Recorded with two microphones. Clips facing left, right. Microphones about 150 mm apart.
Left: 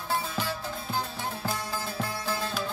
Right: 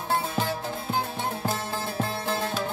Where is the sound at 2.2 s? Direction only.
60° right (ahead or behind).